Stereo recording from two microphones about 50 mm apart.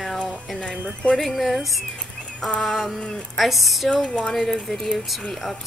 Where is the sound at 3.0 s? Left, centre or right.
Centre.